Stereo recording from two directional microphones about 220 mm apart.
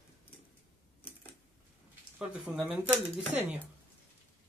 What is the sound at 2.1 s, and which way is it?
Speech, 5° right (ahead or behind).